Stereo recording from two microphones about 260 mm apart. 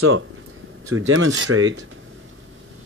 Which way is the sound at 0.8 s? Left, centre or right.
Right.